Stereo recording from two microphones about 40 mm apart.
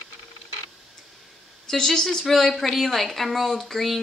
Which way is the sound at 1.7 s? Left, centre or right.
Centre.